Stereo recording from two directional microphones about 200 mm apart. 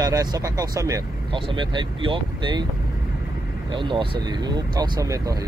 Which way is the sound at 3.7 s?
25° right (ahead or behind).